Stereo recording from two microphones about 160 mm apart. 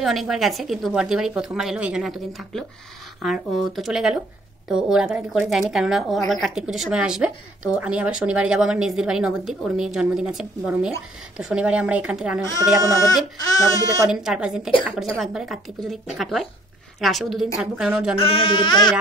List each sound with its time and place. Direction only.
0.0 s a woman's voice: centre (ahead or behind)
13.4 s speech: 25° left (ahead or behind)
14.0 s a woman's voice: 5° right (ahead or behind)
18.2 s speech: 35° left (ahead or behind)